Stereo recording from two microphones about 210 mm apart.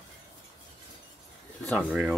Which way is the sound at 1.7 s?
5° right (ahead or behind).